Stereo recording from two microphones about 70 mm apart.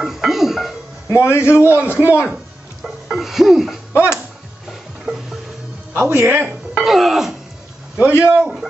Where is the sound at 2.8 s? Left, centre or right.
Centre.